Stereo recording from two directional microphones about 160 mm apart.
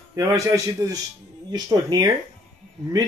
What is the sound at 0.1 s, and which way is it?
Speech, 20° right (ahead or behind).